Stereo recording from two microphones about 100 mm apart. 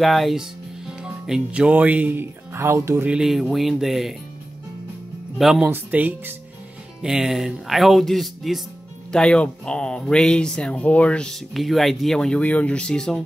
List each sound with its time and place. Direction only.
0.0 s speech: centre (ahead or behind); by 3.1 s 25° right (ahead or behind)
3.1 s speech: 5° right (ahead or behind)
5.4 s speech: 5° right (ahead or behind)
5.7 s speech: 15° right (ahead or behind)
7.0 s speech: 5° right (ahead or behind)